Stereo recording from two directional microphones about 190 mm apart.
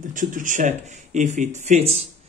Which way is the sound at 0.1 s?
45° right (ahead or behind).